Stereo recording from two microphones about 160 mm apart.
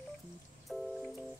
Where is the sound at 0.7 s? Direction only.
Centre (ahead or behind).